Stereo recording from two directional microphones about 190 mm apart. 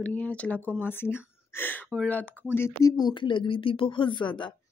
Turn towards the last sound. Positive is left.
turn(degrees=25)  # may be behind; listen again after turning